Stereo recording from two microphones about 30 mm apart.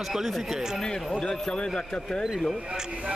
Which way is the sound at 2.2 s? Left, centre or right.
Centre.